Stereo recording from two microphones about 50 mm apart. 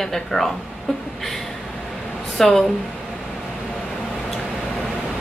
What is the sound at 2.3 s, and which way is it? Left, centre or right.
Speech, centre.